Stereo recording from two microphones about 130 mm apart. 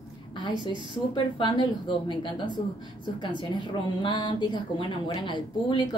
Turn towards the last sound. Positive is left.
turn(degrees=35)  # may be behind; listen again after turning